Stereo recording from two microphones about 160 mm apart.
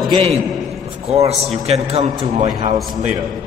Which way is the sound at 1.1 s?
40° right (ahead or behind).